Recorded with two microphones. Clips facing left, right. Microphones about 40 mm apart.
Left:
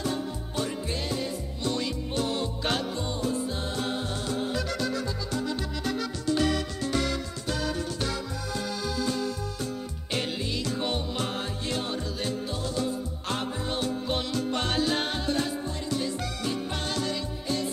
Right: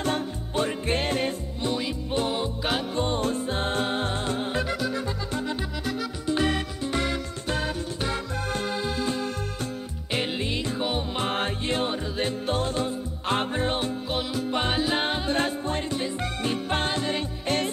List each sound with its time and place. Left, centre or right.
0.0 s music: right
1.6 s music: centre
2.9 s music: right
8.1 s music: right
10.8 s music: centre
11.1 s music: right
12.4 s music: right
14.0 s music: centre; by 15.3 s right
15.3 s music: right